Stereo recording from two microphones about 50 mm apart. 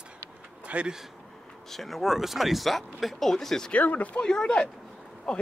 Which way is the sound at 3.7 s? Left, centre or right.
Left.